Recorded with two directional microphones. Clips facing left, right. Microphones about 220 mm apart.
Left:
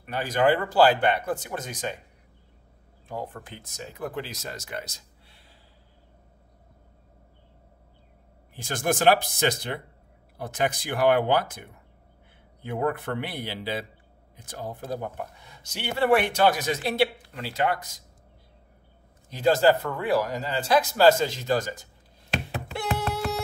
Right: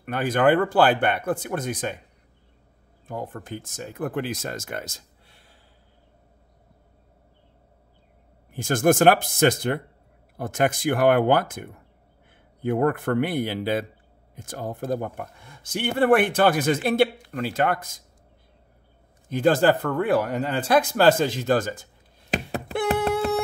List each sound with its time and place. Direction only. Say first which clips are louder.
0.0 s speech: right 3 dB; 55° right (ahead or behind)
3.1 s speech: right 3 dB; 45° right (ahead or behind)
8.5 s speech: right 7 dB; 45° right (ahead or behind)
19.2 s speech: right 2 dB; 50° right (ahead or behind)
22.5 s a sound: right 9 dB; 50° right (ahead or behind)